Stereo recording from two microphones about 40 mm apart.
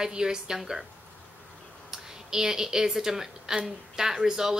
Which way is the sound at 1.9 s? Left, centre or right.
Centre.